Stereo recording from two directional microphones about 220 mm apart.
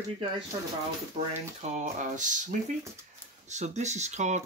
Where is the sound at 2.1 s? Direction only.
35° right (ahead or behind).